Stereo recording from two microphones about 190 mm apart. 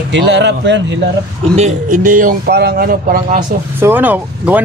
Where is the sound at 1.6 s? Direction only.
45° right (ahead or behind).